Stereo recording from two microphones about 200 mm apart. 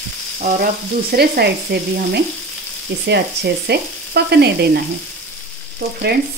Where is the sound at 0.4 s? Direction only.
40° right (ahead or behind).